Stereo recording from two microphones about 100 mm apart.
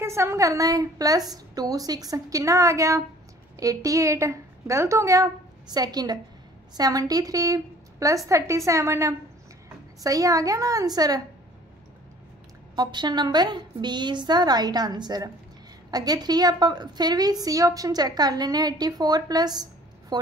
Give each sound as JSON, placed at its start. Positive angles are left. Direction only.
{"t": 0.0, "sound": "a woman's voice", "side_deg": -25}
{"t": 12.7, "sound": "a woman's voice", "side_deg": -45}